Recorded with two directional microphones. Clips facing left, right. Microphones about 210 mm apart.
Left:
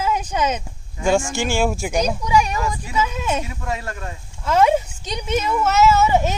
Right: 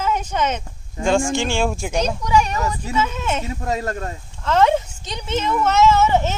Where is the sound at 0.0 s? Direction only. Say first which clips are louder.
Even; 10° left (ahead or behind).